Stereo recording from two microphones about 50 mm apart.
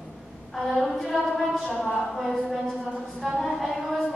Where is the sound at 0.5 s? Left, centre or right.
Centre.